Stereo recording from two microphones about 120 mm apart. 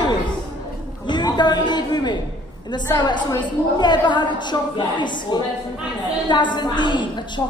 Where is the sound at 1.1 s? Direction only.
35° left (ahead or behind).